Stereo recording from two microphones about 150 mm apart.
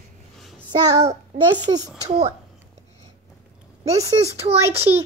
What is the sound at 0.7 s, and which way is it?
A child's voice, 25° right (ahead or behind).